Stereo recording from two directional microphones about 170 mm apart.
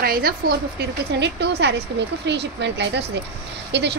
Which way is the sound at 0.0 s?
65° right (ahead or behind).